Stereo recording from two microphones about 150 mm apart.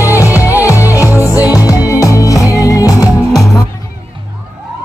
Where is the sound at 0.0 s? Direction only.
20° left (ahead or behind).